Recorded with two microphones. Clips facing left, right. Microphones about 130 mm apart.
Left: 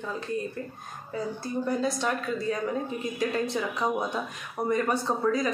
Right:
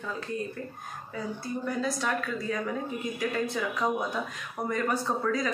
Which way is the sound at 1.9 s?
20° left (ahead or behind).